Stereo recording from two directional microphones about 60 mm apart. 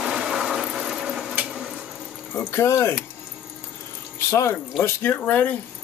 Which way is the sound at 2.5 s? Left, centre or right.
Left.